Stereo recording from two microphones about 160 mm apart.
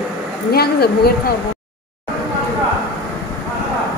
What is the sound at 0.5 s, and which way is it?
Speech, 75° left (ahead or behind).